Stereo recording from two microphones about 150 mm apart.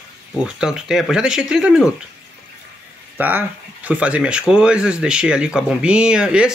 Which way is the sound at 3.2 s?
10° right (ahead or behind).